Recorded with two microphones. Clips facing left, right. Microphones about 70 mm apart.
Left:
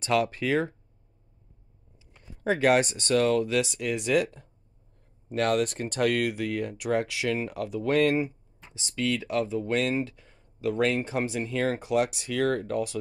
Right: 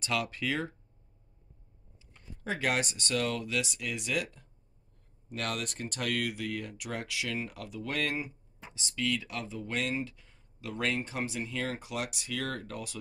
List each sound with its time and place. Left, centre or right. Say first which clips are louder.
0.0 s speech: left 7 dB; left
2.4 s speech: left 9 dB; left
8.6 s a sound: right 2 dB; centre
8.9 s speech: left 7 dB; left
11.8 s speech: left 11 dB; left